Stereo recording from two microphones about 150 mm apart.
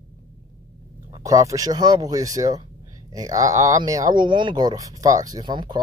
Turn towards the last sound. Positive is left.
turn(degrees=-30)  # may be behind; listen again after turning